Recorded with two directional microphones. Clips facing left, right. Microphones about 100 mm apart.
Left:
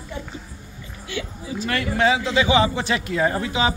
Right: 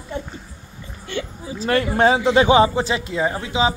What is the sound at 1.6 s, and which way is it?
A man's voice, 35° right (ahead or behind).